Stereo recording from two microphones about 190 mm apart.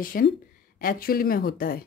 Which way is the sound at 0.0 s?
50° left (ahead or behind).